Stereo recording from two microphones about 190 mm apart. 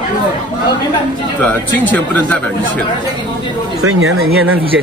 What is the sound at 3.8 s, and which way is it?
Speech, 90° right.